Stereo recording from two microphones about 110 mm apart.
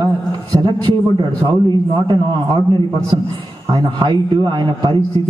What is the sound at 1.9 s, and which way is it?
A man's voice, 45° right (ahead or behind).